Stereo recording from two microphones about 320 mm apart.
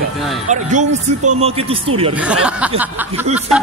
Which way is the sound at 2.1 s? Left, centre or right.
Centre.